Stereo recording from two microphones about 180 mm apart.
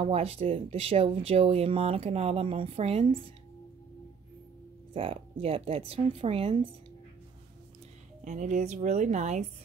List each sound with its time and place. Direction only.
0.0 s speech: 35° right (ahead or behind)
4.9 s speech: 30° right (ahead or behind)
8.2 s speech: 45° right (ahead or behind)